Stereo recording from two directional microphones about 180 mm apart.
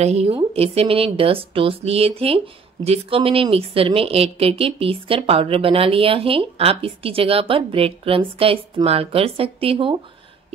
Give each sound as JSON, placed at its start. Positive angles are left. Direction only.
{"t": 0.0, "sound": "a woman's voice", "side_deg": -35}